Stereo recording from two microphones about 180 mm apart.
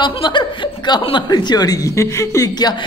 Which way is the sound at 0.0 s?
25° left (ahead or behind).